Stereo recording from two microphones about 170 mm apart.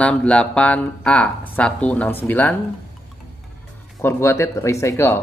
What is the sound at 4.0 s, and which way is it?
Speech, 15° left (ahead or behind).